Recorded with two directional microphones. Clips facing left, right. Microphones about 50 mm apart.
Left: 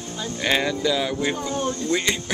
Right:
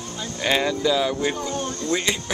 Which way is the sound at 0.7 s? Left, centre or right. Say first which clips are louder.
Right 1 dB; left.